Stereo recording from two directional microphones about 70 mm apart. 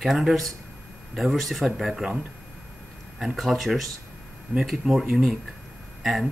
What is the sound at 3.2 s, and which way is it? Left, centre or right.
Speech, centre.